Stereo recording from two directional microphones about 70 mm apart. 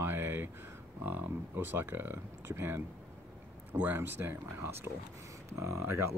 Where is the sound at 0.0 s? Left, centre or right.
Right.